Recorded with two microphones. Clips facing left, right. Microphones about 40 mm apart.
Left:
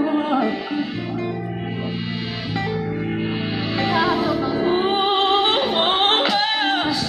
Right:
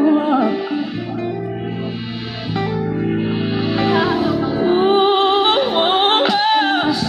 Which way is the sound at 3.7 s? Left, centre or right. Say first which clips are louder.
Right 2 dB; centre.